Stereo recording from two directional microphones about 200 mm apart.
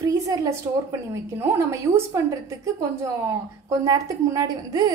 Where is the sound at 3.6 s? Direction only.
15° right (ahead or behind).